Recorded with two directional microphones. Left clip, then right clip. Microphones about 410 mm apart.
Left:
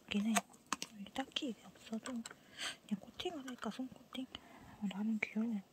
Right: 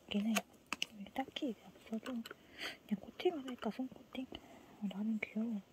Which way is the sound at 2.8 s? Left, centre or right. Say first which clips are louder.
Right 6 dB; centre.